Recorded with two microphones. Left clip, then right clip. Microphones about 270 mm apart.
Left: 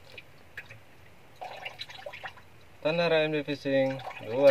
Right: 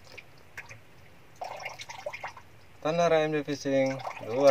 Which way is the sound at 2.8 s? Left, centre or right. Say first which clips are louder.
Right 1 dB; centre.